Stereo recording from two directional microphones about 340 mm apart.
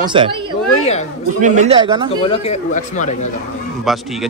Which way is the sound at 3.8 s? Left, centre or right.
Centre.